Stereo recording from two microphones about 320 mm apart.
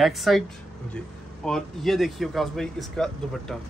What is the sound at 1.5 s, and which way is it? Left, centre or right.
Speech, centre.